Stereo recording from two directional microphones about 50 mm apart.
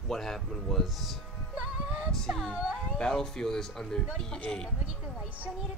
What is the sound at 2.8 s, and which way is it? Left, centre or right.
Speech, centre.